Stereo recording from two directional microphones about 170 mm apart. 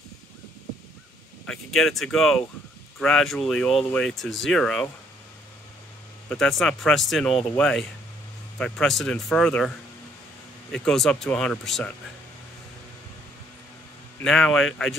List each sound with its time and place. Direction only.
1.4 s speech: centre (ahead or behind)
6.2 s speech: 5° left (ahead or behind)
10.7 s speech: 5° left (ahead or behind)
14.2 s speech: centre (ahead or behind)